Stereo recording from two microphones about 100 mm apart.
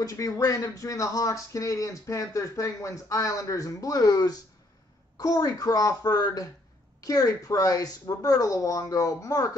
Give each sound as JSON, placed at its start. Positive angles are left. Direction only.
{"t": 0.0, "sound": "speech", "side_deg": 35}